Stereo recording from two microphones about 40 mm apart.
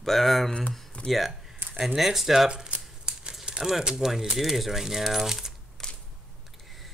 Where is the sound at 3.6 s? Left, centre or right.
Centre.